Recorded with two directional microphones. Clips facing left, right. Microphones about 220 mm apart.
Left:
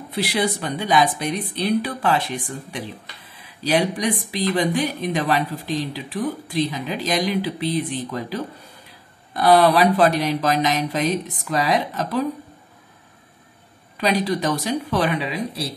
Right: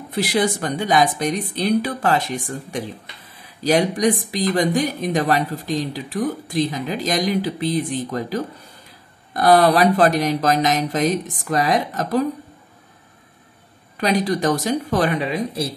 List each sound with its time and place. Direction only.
0.1 s speech: 50° right (ahead or behind)
13.9 s speech: 45° right (ahead or behind)